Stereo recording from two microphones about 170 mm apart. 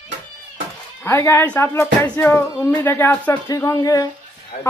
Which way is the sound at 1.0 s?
15° left (ahead or behind).